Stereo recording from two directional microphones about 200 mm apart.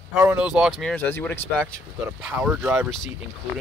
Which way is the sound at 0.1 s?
10° right (ahead or behind).